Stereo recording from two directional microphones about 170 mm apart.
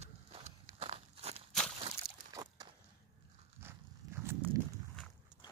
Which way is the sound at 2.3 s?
20° right (ahead or behind).